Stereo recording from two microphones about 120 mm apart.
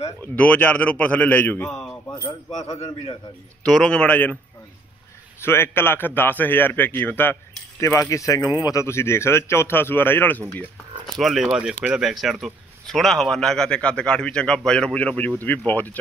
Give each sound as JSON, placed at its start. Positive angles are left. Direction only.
{"t": 0.4, "sound": "a man's voice", "side_deg": 15}
{"t": 1.7, "sound": "speech", "side_deg": 5}
{"t": 2.0, "sound": "keys jangling", "side_deg": 30}
{"t": 3.6, "sound": "a man's voice", "side_deg": 5}
{"t": 5.4, "sound": "a man's voice", "side_deg": 20}
{"t": 11.1, "sound": "a man's voice", "side_deg": 0}